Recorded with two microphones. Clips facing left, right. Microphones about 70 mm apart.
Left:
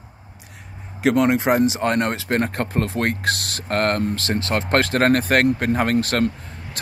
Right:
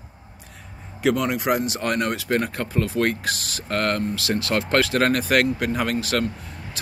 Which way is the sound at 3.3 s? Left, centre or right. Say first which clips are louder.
Left 4 dB; left.